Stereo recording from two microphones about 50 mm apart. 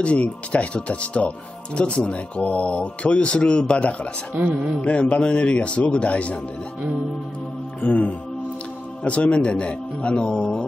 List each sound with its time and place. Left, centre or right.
0.0 s speech: left
7.8 s music: left
9.0 s speech: left